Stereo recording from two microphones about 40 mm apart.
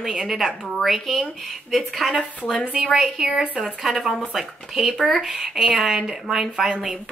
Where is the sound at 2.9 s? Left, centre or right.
Centre.